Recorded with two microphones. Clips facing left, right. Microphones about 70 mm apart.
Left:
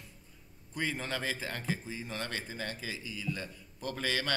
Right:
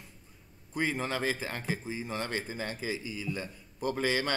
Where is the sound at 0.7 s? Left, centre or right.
Centre.